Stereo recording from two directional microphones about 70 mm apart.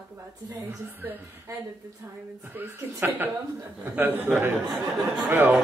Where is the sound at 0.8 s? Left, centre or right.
Right.